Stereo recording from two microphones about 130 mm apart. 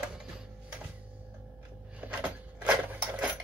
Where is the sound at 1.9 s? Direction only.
10° right (ahead or behind).